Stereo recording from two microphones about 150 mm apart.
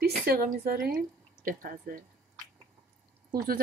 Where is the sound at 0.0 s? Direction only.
85° right.